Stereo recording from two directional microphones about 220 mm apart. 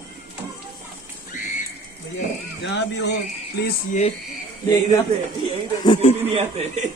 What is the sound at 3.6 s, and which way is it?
Speech, 35° left (ahead or behind).